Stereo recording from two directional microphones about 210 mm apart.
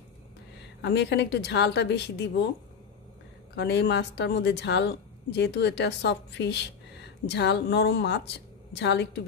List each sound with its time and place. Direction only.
0.8 s a woman's voice: 55° left (ahead or behind)
3.5 s a woman's voice: 55° left (ahead or behind)